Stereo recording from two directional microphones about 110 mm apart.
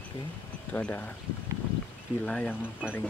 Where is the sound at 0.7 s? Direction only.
15° left (ahead or behind).